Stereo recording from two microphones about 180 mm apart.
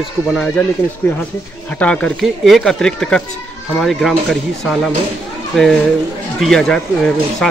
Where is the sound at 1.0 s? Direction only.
10° left (ahead or behind).